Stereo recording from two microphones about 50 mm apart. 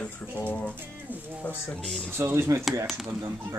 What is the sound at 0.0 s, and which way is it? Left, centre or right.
Speech, left.